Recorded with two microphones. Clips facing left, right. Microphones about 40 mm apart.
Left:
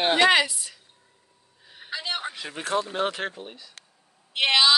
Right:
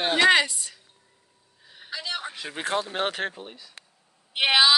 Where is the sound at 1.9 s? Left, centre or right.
Left.